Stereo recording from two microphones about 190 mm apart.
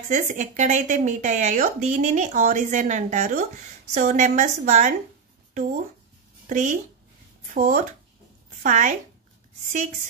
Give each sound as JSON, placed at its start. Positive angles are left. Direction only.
{"t": 0.1, "sound": "speech", "side_deg": -40}
{"t": 6.5, "sound": "speech", "side_deg": -40}